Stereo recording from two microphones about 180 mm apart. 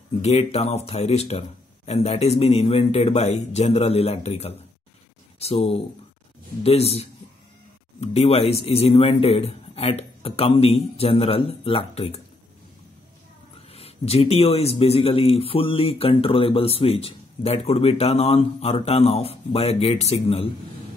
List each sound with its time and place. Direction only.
0.2 s speech: 35° left (ahead or behind)
13.7 s speech: 35° left (ahead or behind)